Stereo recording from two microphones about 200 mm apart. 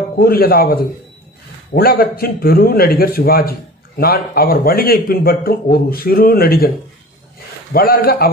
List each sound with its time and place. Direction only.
0.2 s speech: 45° left (ahead or behind)
7.7 s speech: 50° left (ahead or behind)